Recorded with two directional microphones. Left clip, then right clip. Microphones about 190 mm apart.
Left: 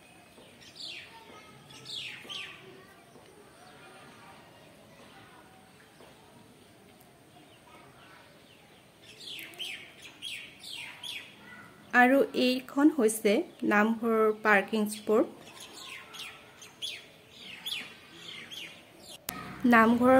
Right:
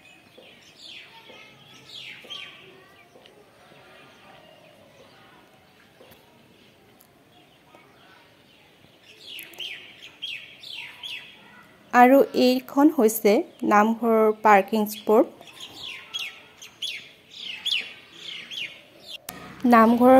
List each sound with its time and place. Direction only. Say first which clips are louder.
11.9 s a woman's voice: right 7 dB; 25° right (ahead or behind)
16.1 s bird: right 10 dB; 45° left (ahead or behind)
19.7 s a woman's voice: right 6 dB; 25° right (ahead or behind)